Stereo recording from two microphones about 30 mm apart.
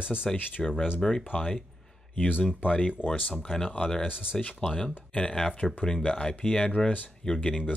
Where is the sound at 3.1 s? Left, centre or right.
Left.